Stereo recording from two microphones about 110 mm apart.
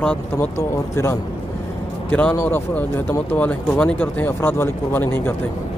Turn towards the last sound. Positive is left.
turn(degrees=20)  # may be behind; listen again after turning